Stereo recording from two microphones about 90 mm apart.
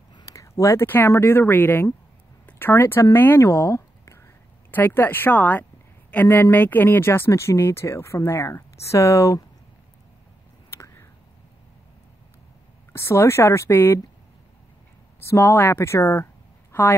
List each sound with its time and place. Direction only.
0.2 s a sound: 35° left (ahead or behind)
0.8 s speech: 20° left (ahead or behind)
4.6 s speech: 20° left (ahead or behind)
12.9 s speech: 30° left (ahead or behind)
15.1 s speech: 30° left (ahead or behind)